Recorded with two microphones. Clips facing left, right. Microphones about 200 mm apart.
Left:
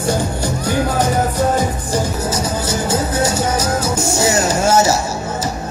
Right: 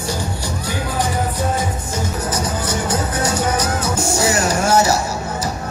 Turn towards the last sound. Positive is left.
turn(degrees=25)  # may be behind; listen again after turning